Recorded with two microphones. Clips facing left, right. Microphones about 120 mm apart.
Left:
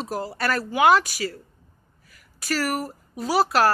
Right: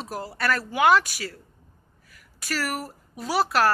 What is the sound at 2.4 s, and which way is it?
Speech, centre (ahead or behind).